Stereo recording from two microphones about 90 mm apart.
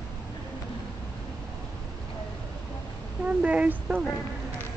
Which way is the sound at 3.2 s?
15° right (ahead or behind).